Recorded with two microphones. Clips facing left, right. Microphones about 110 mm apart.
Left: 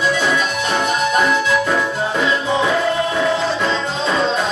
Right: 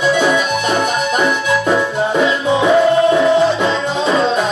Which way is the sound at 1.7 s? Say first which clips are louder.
Right 4 dB; 10° right (ahead or behind).